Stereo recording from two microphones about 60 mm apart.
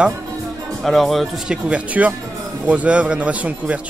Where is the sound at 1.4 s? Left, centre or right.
Centre.